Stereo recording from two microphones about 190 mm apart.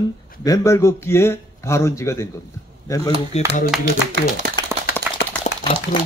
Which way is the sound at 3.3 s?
35° left (ahead or behind).